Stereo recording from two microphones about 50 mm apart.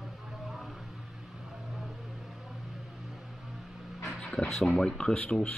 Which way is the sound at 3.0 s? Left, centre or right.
Centre.